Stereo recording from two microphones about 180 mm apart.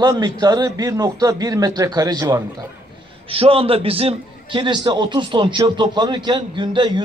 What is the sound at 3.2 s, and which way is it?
A man's voice, 30° right (ahead or behind).